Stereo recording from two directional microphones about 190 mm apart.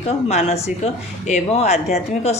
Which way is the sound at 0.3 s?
35° left (ahead or behind).